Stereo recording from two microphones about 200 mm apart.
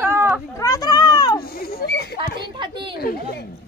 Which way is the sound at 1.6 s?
50° left (ahead or behind).